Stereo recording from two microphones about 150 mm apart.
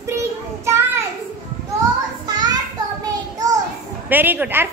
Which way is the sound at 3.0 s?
25° right (ahead or behind).